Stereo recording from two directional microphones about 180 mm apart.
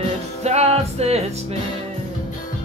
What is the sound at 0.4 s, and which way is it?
Music, 35° right (ahead or behind).